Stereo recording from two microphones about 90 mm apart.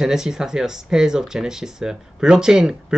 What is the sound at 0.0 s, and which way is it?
Speech, 5° right (ahead or behind).